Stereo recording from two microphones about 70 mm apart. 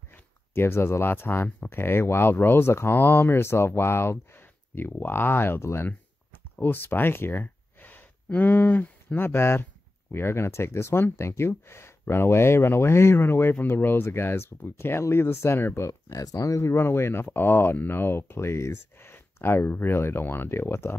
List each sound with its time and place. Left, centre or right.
0.1 s speech: left